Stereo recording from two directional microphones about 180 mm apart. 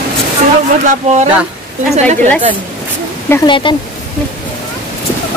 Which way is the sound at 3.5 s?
25° left (ahead or behind).